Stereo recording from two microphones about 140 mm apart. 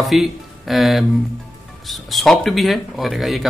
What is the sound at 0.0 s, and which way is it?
Speech, centre (ahead or behind).